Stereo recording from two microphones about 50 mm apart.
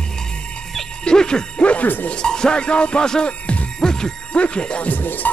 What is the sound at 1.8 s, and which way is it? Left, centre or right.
Speech, left.